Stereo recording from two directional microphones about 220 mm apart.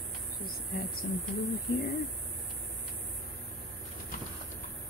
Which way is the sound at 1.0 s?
45° left (ahead or behind).